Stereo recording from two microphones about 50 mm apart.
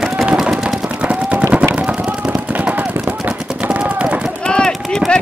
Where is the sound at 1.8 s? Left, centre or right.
Right.